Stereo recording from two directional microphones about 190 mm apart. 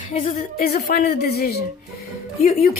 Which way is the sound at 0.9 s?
50° left (ahead or behind).